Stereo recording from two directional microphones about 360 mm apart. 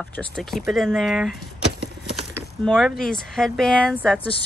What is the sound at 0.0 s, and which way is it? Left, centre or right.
Speech, centre.